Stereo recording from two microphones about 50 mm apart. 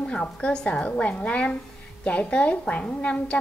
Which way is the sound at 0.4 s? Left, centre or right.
Left.